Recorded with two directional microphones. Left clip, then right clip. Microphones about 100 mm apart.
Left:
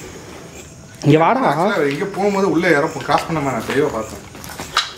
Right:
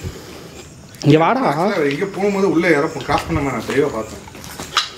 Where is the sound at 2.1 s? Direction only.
10° left (ahead or behind).